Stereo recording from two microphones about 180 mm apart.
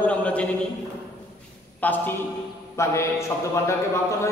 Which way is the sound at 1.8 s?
10° left (ahead or behind).